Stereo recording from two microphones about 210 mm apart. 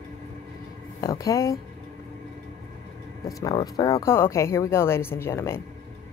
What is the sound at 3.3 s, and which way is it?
Speech, 15° left (ahead or behind).